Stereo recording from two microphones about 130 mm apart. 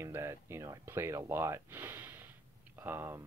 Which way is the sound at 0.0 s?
20° right (ahead or behind).